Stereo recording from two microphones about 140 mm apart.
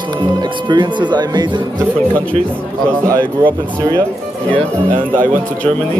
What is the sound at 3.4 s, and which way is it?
Speech, 35° right (ahead or behind).